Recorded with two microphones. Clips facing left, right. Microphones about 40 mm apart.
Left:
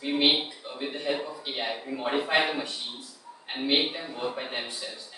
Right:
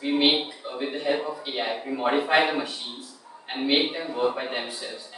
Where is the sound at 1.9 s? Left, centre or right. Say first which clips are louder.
Right 5 dB; right.